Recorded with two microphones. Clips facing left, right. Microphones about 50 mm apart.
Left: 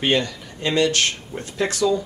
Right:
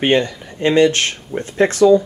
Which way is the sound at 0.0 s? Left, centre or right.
Right.